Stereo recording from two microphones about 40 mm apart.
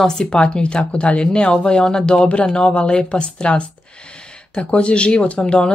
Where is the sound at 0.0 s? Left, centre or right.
Centre.